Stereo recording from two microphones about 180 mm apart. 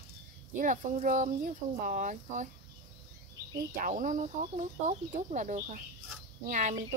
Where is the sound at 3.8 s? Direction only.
45° right (ahead or behind).